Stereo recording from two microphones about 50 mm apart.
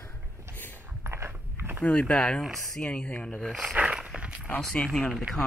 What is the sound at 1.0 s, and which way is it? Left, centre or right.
Biting, right.